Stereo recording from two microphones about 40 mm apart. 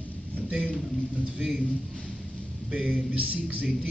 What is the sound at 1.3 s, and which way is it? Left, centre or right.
Speech, right.